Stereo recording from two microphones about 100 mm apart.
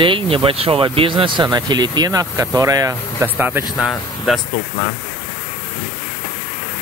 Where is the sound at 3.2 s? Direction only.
15° right (ahead or behind).